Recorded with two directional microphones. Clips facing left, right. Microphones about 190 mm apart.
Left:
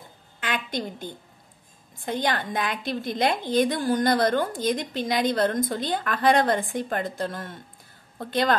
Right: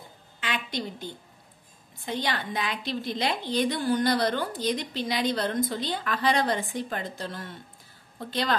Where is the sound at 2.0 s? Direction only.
50° left (ahead or behind).